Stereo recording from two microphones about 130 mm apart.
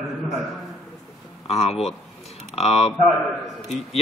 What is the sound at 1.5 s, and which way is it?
Speech, 55° left (ahead or behind).